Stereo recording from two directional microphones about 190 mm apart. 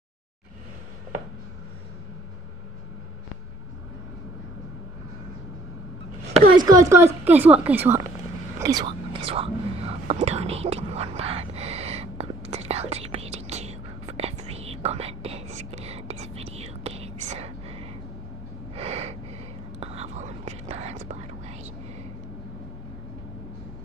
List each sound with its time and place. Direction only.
6.5 s a woman's voice: 20° right (ahead or behind)
8.5 s whispering: 20° right (ahead or behind)
18.8 s gasp: 35° right (ahead or behind)
19.8 s whispering: 35° right (ahead or behind)